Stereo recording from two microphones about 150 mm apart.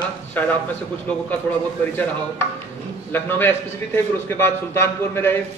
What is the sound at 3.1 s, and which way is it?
A man's voice, 15° left (ahead or behind).